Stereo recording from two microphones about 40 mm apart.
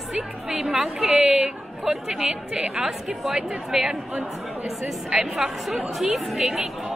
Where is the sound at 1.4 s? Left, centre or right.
Centre.